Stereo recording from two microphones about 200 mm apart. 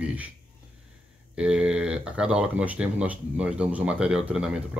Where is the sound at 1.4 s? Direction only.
5° right (ahead or behind).